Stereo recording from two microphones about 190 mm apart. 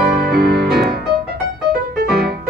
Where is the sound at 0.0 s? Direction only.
55° right (ahead or behind).